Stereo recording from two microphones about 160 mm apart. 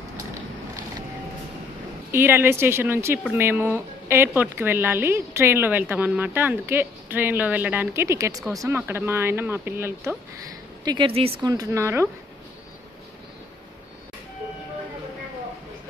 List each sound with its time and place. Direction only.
2.0 s speech: 15° right (ahead or behind)
10.8 s a woman's voice: 25° right (ahead or behind)
11.4 s a woman's voice: 20° right (ahead or behind)